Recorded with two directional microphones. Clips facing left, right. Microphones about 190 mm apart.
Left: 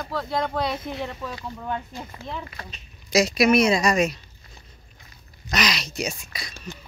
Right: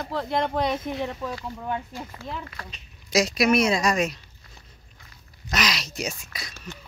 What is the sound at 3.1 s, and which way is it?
Speech, centre (ahead or behind).